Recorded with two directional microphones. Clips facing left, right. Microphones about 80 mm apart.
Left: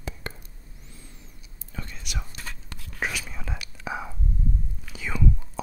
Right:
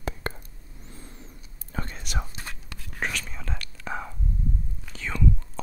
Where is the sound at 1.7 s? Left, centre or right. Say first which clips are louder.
Right 4 dB; right.